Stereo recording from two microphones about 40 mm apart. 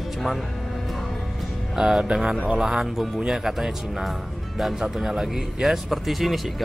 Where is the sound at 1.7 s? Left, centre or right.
Centre.